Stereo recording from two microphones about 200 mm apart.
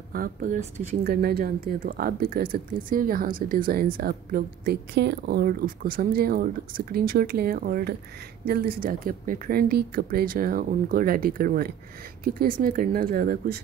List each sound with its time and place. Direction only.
0.1 s speech: 45° right (ahead or behind)